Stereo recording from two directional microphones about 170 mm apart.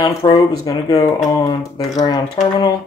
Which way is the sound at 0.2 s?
25° left (ahead or behind).